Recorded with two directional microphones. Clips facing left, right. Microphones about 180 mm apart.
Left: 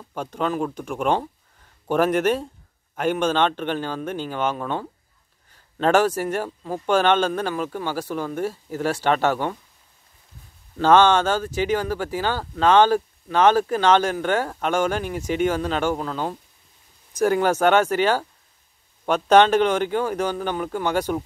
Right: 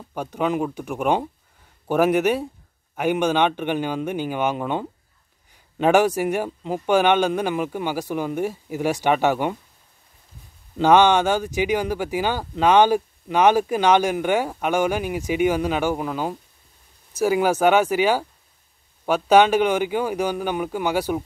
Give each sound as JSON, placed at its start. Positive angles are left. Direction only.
{"t": 0.1, "sound": "speech", "side_deg": -10}
{"t": 10.8, "sound": "speech", "side_deg": -15}